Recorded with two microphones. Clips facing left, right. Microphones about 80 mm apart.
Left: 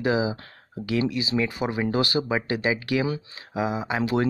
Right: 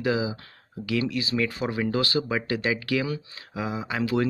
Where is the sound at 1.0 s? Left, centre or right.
Centre.